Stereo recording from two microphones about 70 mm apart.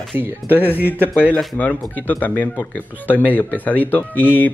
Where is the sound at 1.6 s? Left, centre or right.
Left.